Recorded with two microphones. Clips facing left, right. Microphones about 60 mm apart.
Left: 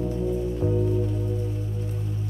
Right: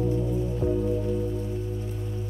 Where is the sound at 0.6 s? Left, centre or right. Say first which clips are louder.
Right 1 dB; left.